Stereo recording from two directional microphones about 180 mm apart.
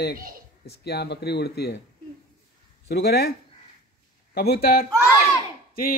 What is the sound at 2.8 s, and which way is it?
Speech, 60° left (ahead or behind).